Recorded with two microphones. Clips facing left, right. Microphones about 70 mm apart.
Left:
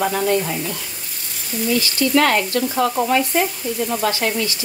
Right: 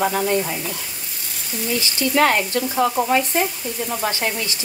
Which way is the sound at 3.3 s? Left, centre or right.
Centre.